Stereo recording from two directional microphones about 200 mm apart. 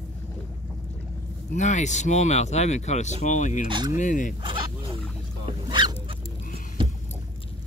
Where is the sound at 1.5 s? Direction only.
35° left (ahead or behind).